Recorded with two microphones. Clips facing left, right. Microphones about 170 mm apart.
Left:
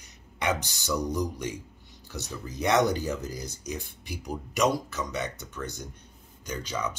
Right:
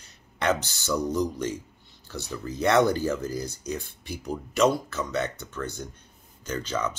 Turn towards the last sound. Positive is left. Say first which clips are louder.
# right 3 dB
turn(degrees=10)  # may be behind; listen again after turning